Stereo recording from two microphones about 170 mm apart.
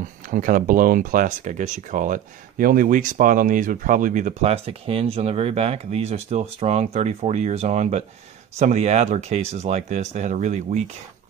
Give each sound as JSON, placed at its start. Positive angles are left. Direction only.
{"t": 0.3, "sound": "speech", "side_deg": -50}